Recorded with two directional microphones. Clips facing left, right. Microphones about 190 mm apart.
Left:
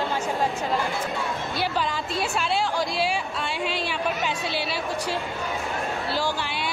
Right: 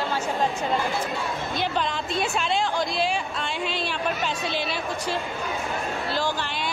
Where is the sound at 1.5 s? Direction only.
5° left (ahead or behind).